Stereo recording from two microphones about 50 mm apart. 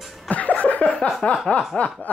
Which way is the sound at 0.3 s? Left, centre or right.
Left.